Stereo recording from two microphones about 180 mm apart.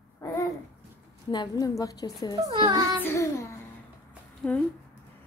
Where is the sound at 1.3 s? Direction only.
20° left (ahead or behind).